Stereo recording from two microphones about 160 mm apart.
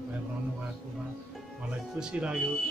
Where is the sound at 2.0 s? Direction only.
5° right (ahead or behind).